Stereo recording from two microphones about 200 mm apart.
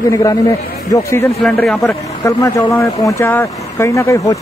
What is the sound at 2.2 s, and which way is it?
Speech, 15° left (ahead or behind).